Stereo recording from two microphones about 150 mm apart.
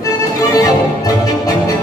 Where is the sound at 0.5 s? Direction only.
25° left (ahead or behind).